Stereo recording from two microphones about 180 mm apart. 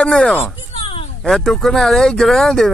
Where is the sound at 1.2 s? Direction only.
Centre (ahead or behind).